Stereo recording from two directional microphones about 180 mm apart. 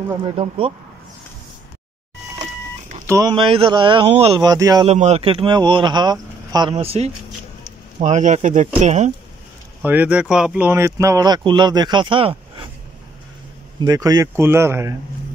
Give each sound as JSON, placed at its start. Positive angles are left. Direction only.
{"t": 0.2, "sound": "speech", "side_deg": -30}
{"t": 3.1, "sound": "speech", "side_deg": -20}
{"t": 4.8, "sound": "speech", "side_deg": -40}
{"t": 9.8, "sound": "speech", "side_deg": -10}
{"t": 13.7, "sound": "speech", "side_deg": -20}